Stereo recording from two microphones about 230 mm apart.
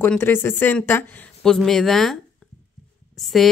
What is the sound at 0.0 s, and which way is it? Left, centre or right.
Speech, centre.